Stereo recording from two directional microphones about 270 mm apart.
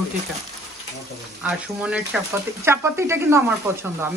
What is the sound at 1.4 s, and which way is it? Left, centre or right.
Speech, centre.